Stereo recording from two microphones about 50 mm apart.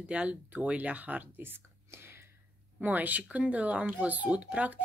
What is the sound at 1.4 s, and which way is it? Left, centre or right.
Whispering, right.